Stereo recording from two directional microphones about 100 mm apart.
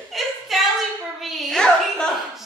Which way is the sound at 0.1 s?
Centre (ahead or behind).